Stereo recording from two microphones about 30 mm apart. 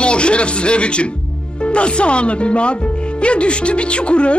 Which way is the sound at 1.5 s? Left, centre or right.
Left.